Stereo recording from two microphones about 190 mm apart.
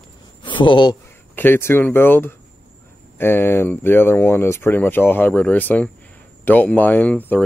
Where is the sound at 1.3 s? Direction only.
10° left (ahead or behind).